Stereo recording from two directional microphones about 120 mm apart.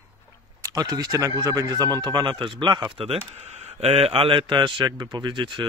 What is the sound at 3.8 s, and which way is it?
Speech, 55° right (ahead or behind).